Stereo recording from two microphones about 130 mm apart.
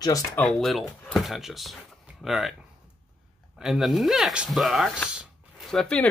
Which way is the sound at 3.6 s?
5° right (ahead or behind).